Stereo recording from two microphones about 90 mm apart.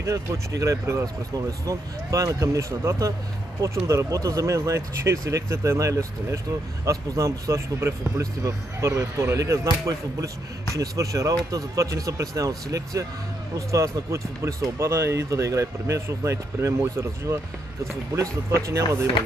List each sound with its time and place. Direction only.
0.0 s speech: 35° right (ahead or behind)